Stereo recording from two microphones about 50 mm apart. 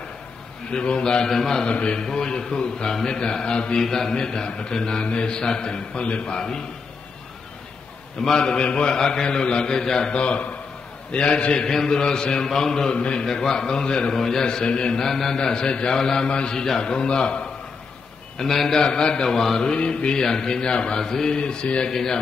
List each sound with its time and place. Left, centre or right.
0.7 s a man's voice: left
8.2 s a man's voice: centre
12.9 s a man's voice: left
13.2 s a man's voice: centre
15.0 s a man's voice: centre
18.4 s a man's voice: centre
19.7 s a man's voice: left